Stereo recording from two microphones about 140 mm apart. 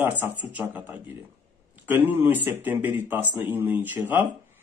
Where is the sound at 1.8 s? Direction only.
15° right (ahead or behind).